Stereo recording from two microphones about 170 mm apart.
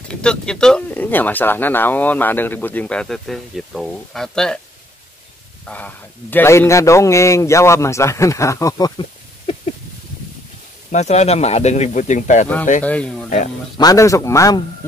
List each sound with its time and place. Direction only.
0.1 s speech: 5° left (ahead or behind)
5.7 s speech: 10° left (ahead or behind)
10.9 s speech: 40° left (ahead or behind)
12.8 s speech: 5° left (ahead or behind)
13.7 s speech: 20° left (ahead or behind)